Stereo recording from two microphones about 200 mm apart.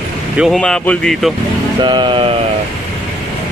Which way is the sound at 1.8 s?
25° right (ahead or behind).